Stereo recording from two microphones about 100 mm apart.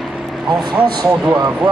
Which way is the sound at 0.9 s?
45° right (ahead or behind).